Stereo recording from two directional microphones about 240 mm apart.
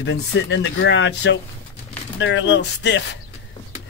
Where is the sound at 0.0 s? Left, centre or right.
Left.